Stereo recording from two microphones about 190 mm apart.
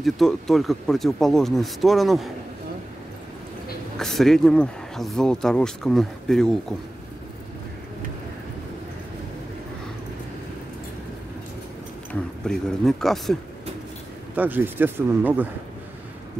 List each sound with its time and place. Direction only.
0.0 s speech: centre (ahead or behind)
4.0 s speech: centre (ahead or behind)
12.1 s speech: 5° left (ahead or behind)
14.3 s speech: 10° right (ahead or behind)